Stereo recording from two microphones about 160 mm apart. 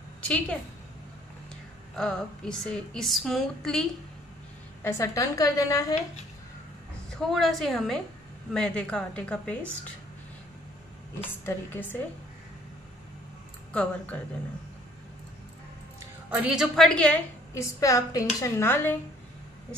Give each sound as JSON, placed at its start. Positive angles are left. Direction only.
{"t": 0.2, "sound": "a woman's voice", "side_deg": 10}
{"t": 2.0, "sound": "a woman's voice", "side_deg": 5}
{"t": 4.8, "sound": "a woman's voice", "side_deg": 15}
{"t": 7.2, "sound": "a woman's voice", "side_deg": 0}
{"t": 11.4, "sound": "a woman's voice", "side_deg": 10}
{"t": 13.7, "sound": "a woman's voice", "side_deg": 10}
{"t": 16.3, "sound": "a woman's voice", "side_deg": -5}